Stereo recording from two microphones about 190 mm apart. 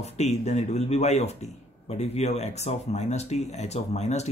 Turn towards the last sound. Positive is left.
turn(degrees=35)  # may be behind; listen again after turning